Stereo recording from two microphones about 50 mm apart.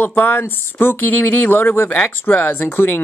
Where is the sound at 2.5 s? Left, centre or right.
Left.